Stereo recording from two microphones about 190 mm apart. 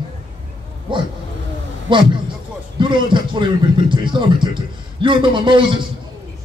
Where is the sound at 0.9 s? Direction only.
25° right (ahead or behind).